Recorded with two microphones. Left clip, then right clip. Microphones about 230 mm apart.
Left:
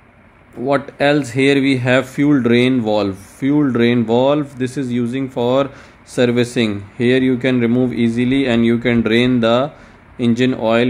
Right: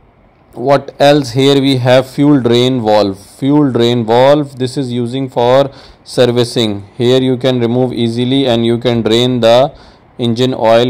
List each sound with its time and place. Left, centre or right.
0.9 s speech: centre